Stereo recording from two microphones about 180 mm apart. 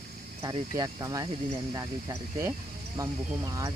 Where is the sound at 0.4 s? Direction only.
20° right (ahead or behind).